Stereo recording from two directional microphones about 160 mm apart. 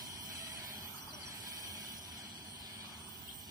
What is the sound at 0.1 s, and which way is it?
Vehicle, 20° right (ahead or behind).